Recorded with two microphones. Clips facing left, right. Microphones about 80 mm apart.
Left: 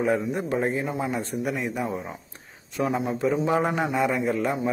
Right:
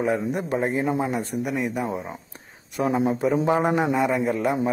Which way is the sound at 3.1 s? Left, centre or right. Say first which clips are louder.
Right 2 dB; centre.